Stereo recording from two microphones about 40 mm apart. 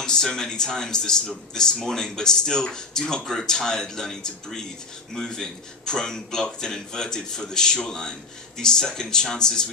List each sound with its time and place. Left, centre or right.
0.0 s speech: centre